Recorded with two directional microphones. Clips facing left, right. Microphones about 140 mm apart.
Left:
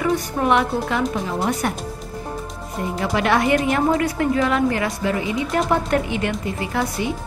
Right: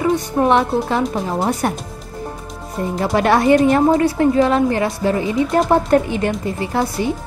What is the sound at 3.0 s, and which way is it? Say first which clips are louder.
A woman's voice: right 4 dB; 40° right (ahead or behind).